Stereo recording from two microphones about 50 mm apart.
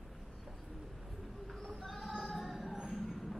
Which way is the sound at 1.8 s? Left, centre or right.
Centre.